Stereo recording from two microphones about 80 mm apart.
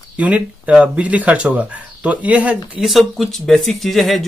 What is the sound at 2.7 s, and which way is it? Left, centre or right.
Speech, centre.